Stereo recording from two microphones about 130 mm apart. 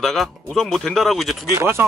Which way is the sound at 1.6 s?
20° right (ahead or behind).